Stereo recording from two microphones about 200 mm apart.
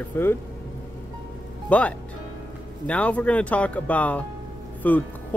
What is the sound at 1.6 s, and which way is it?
Speech, 5° left (ahead or behind).